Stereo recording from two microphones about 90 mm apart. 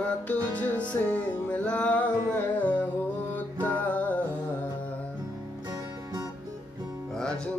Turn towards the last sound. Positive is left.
turn(degrees=10)  # may be behind; listen again after turning